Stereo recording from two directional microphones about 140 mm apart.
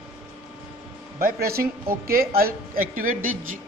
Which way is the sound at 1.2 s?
90° right.